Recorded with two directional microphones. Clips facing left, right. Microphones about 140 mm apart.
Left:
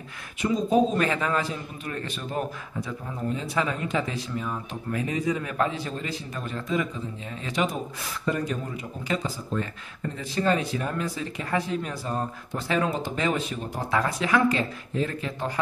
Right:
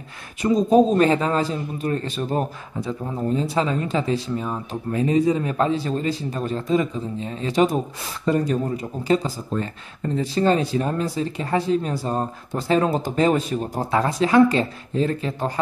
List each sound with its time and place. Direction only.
0.4 s a man's voice: 40° right (ahead or behind)